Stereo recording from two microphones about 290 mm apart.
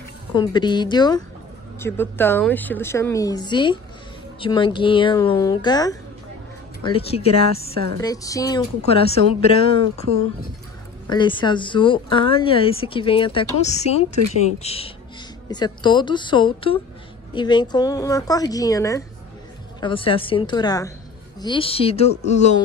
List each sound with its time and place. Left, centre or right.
0.3 s speech: centre
7.7 s a woman's voice: right
8.0 s speech: centre
11.1 s speech: centre